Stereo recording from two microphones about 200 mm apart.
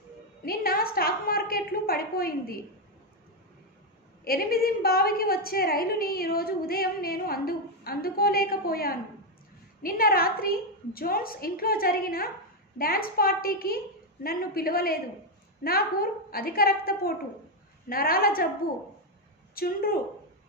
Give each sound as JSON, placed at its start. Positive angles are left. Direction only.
{"t": 0.5, "sound": "a sound", "side_deg": 50}
{"t": 4.2, "sound": "a woman's voice", "side_deg": 50}
{"t": 19.5, "sound": "a woman's voice", "side_deg": 50}